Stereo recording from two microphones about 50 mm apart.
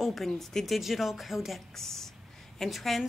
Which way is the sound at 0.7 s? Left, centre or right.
Centre.